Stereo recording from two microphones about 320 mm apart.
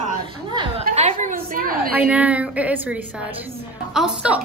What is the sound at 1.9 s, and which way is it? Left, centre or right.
A woman's voice, centre.